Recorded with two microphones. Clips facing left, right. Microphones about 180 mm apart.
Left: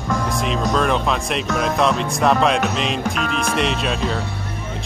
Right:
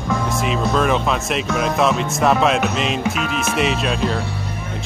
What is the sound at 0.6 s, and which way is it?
Speech, 5° right (ahead or behind).